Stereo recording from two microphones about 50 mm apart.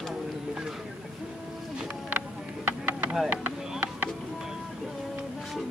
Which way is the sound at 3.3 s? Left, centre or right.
Right.